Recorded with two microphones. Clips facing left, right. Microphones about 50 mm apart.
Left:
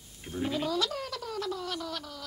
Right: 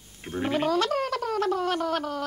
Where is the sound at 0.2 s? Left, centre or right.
Right.